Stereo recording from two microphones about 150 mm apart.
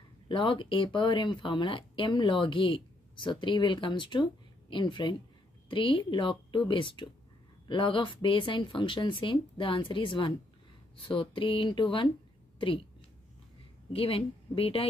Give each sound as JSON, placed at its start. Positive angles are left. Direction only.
{"t": 0.3, "sound": "a woman's voice", "side_deg": 35}
{"t": 13.9, "sound": "speech", "side_deg": 40}